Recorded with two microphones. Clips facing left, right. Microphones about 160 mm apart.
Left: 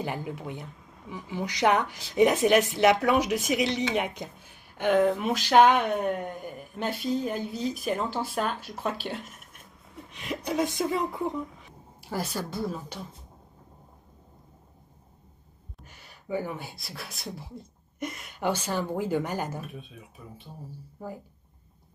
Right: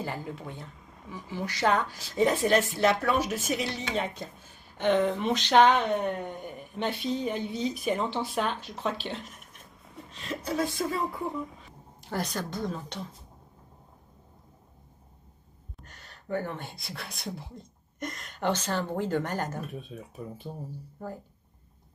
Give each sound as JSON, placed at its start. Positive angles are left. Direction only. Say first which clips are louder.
{"t": 0.0, "sound": "speech", "louder": "left 2 dB", "side_deg": 15}
{"t": 12.0, "sound": "speech", "louder": "even", "side_deg": 5}
{"t": 15.8, "sound": "speech", "louder": "even", "side_deg": 10}
{"t": 19.9, "sound": "speech", "louder": "right 6 dB", "side_deg": -40}
{"t": 21.0, "sound": "speech", "louder": "even", "side_deg": 10}